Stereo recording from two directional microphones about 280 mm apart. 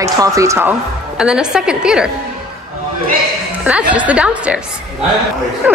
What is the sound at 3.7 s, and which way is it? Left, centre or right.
Speech, centre.